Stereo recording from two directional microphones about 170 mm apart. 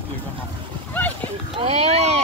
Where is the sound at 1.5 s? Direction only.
35° right (ahead or behind).